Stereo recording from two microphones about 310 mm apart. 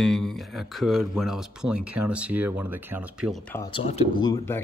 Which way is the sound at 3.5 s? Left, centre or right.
Centre.